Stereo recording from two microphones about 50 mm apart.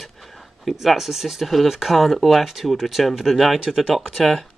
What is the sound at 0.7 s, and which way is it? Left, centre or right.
Speech, centre.